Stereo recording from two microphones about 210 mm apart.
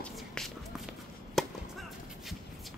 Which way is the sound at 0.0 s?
Centre (ahead or behind).